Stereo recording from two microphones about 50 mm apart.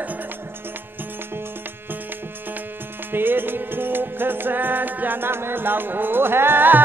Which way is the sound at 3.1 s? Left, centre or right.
Right.